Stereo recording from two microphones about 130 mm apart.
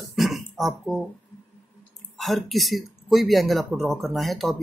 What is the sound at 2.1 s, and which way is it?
Speech, centre (ahead or behind).